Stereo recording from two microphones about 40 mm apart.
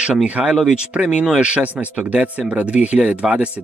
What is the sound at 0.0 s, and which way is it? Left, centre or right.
Speech, right.